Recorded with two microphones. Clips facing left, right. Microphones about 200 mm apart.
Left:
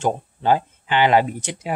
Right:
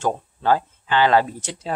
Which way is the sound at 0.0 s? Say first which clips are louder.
Left 1 dB; 20° left (ahead or behind).